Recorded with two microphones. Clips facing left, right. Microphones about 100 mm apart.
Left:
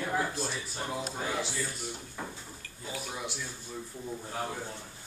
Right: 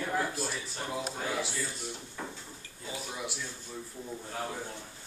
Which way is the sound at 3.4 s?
5° left (ahead or behind).